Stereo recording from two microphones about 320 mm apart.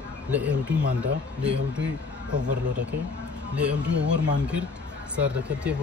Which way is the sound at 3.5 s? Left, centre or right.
Centre.